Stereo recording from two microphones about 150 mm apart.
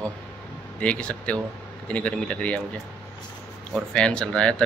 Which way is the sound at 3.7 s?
5° left (ahead or behind).